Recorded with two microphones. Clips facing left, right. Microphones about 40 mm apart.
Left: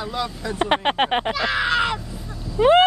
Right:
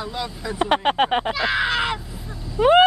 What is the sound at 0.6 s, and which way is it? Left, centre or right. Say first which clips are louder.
Speech: right 1 dB; centre.